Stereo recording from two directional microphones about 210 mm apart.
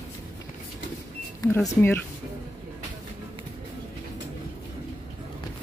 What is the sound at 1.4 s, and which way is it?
Speech, 15° left (ahead or behind).